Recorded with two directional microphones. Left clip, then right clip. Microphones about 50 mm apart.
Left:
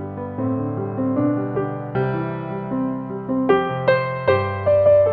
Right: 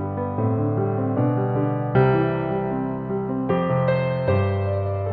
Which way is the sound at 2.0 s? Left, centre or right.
Left.